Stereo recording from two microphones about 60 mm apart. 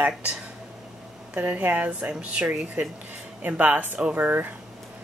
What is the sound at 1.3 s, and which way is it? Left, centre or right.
Speech, right.